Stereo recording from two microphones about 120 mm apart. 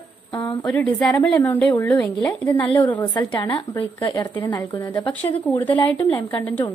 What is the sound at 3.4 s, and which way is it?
A woman's voice, 40° left (ahead or behind).